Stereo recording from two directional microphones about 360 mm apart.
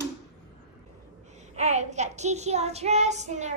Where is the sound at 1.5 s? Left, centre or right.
Centre.